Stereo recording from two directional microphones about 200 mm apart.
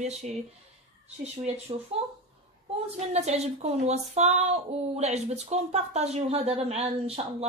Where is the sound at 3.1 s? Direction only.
35° right (ahead or behind).